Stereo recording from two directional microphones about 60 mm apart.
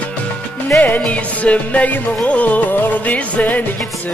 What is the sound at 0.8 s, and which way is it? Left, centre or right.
Music, left.